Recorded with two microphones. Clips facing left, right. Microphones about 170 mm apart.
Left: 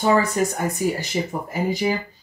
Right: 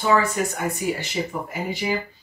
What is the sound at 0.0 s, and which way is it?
Speech, 40° left (ahead or behind).